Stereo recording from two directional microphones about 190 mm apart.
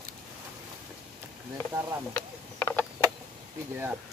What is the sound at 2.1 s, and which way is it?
Mechanisms, 10° left (ahead or behind).